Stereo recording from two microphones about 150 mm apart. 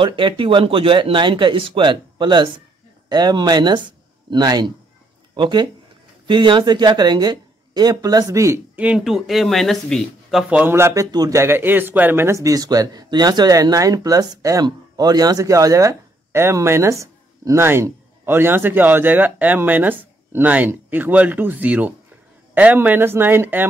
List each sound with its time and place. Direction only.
0.0 s speech: 35° right (ahead or behind)
8.7 s speech: 5° right (ahead or behind)